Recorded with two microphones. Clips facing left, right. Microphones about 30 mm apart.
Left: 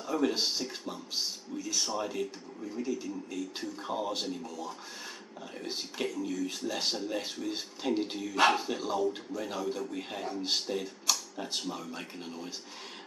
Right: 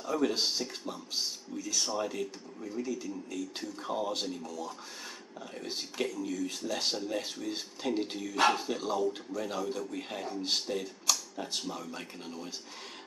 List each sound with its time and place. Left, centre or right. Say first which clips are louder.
0.0 s speech: even; centre
8.4 s a man's voice: left 1 dB; centre
8.6 s a man's voice: even; centre